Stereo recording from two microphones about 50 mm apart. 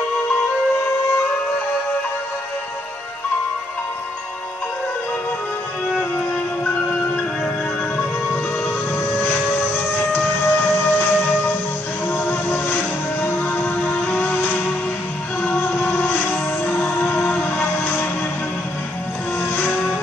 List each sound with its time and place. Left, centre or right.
6.1 s music: left
9.1 s train: left
9.6 s music: left
16.0 s music: left
17.7 s a sound: left
19.7 s music: left